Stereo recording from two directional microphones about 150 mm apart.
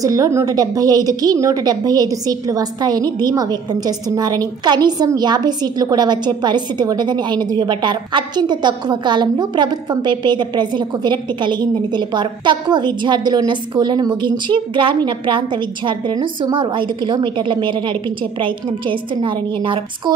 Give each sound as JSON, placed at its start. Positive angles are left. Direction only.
{"t": 0.0, "sound": "a woman's voice", "side_deg": -20}